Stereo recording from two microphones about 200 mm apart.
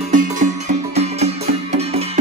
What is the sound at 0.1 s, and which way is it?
Music, 40° right (ahead or behind).